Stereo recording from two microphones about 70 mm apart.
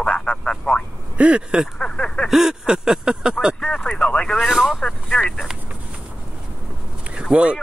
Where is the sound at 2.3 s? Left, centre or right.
Centre.